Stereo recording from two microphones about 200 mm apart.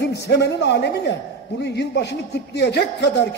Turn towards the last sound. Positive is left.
turn(degrees=60)  # may be behind; listen again after turning